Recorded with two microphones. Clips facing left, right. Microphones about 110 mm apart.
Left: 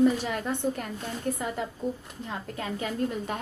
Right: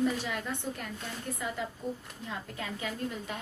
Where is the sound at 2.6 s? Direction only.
45° left (ahead or behind).